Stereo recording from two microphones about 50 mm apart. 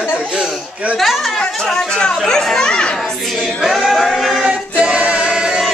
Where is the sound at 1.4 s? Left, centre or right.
Centre.